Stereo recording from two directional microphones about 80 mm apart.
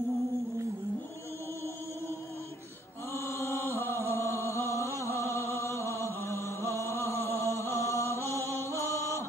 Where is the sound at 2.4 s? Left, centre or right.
Left.